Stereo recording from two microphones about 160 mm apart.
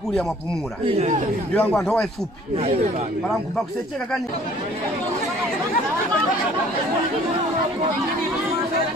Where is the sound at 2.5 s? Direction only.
40° right (ahead or behind).